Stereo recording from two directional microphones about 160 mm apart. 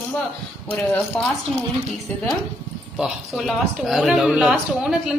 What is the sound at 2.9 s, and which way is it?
A man's voice, centre (ahead or behind).